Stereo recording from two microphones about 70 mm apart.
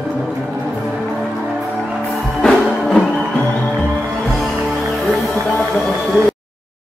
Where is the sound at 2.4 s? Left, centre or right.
Centre.